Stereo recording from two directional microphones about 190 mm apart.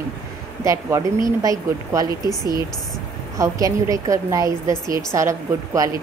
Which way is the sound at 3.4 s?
15° right (ahead or behind).